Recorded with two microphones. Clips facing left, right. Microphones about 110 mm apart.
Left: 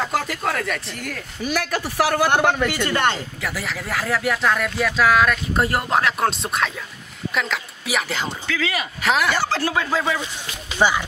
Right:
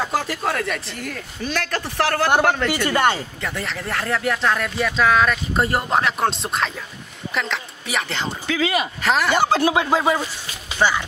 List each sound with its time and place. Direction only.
0.0 s speech: centre (ahead or behind)
2.7 s speech: 10° right (ahead or behind)
3.3 s a woman's voice: 5° left (ahead or behind)
8.5 s speech: 20° right (ahead or behind)
9.0 s speech: centre (ahead or behind)
9.3 s speech: 20° right (ahead or behind)
10.8 s speech: 10° left (ahead or behind)